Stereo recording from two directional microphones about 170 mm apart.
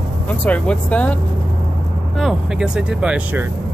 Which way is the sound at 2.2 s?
Centre (ahead or behind).